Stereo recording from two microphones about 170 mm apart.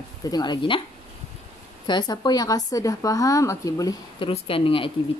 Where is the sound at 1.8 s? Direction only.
25° left (ahead or behind).